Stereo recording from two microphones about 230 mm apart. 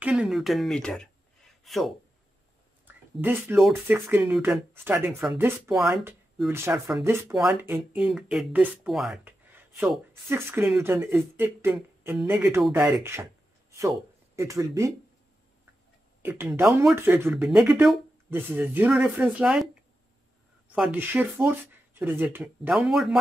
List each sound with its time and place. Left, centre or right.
0.0 s speech: centre
16.2 s speech: centre
20.7 s speech: centre